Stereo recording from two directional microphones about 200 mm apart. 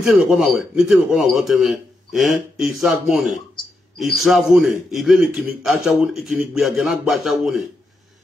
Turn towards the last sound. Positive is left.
turn(degrees=0)  # may be behind; listen again after turning